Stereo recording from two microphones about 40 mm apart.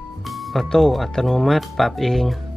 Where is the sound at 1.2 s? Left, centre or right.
Centre.